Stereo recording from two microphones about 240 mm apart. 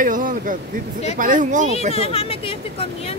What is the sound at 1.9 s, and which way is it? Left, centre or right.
Speech, left.